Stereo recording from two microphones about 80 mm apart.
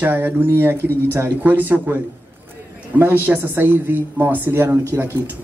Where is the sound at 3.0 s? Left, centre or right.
Right.